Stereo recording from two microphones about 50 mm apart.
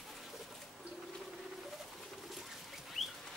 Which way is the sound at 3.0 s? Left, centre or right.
Centre.